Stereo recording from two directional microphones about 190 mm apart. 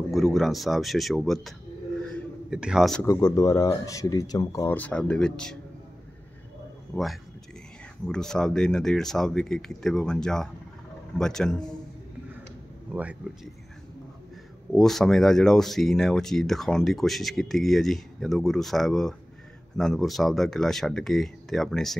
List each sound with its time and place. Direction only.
0.1 s speech: centre (ahead or behind)
2.5 s speech: 5° right (ahead or behind)
3.1 s speech: 20° left (ahead or behind)
6.9 s speech: centre (ahead or behind)
14.7 s speech: centre (ahead or behind)